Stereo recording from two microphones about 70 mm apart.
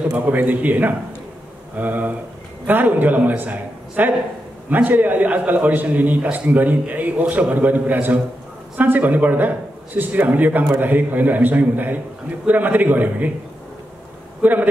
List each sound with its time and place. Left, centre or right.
0.0 s a man's voice: right
14.4 s a man's voice: right